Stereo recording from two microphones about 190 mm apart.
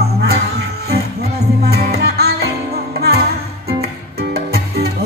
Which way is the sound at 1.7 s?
55° right (ahead or behind).